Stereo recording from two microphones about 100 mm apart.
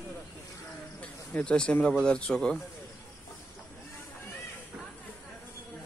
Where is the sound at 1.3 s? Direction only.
10° left (ahead or behind).